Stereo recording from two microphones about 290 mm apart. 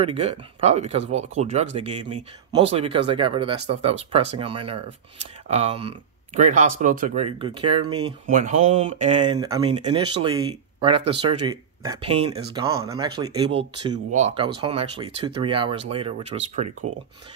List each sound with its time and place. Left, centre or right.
0.0 s speech: centre